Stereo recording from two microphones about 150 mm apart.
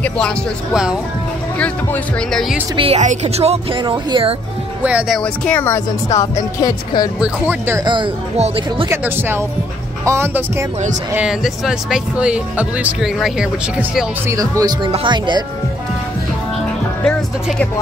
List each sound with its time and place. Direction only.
1.6 s speech: 10° left (ahead or behind)
2.7 s a woman's voice: 35° right (ahead or behind)
3.0 s a woman's voice: 50° right (ahead or behind)
4.8 s speech: 5° right (ahead or behind)
5.2 s speech: 10° left (ahead or behind)
6.6 s speech: 25° left (ahead or behind)
7.2 s speech: 15° right (ahead or behind)
7.8 s a woman's voice: 30° right (ahead or behind)
8.8 s speech: 15° right (ahead or behind)
11.1 s speech: 5° right (ahead or behind)
14.2 s a woman's voice: 20° right (ahead or behind)
17.0 s speech: 5° left (ahead or behind)